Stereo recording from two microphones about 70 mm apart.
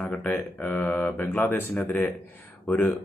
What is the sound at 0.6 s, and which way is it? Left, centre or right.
Speech, left.